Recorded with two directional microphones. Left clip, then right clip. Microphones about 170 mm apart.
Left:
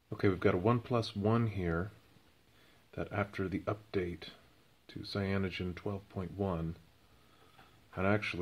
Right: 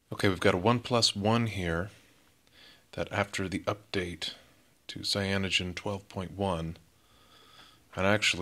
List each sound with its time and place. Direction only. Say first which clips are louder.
0.1 s speech: right 4 dB; 25° right (ahead or behind)
2.9 s speech: right 6 dB; 25° right (ahead or behind)
7.9 s speech: right 7 dB; 25° right (ahead or behind)